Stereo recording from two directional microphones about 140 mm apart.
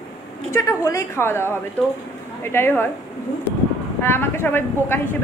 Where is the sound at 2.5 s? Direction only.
15° left (ahead or behind).